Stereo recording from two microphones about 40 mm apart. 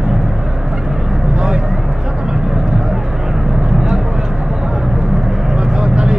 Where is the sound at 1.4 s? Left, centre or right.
Right.